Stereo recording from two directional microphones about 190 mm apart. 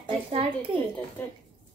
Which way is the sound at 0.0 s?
30° right (ahead or behind).